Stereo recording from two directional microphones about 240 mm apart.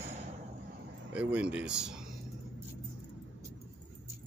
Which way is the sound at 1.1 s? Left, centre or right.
Centre.